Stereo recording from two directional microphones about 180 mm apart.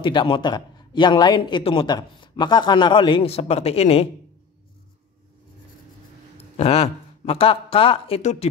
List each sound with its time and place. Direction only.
0.0 s a man's voice: 30° left (ahead or behind)
6.3 s a man's voice: 35° left (ahead or behind)